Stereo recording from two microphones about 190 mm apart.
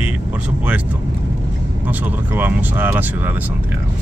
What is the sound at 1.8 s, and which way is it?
Speech, 10° right (ahead or behind).